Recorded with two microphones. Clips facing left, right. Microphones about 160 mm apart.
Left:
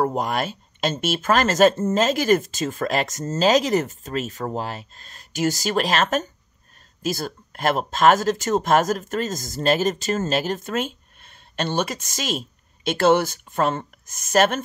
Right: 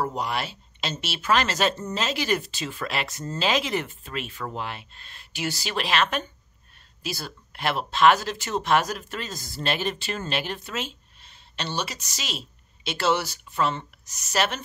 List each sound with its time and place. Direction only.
0.0 s speech: 50° left (ahead or behind)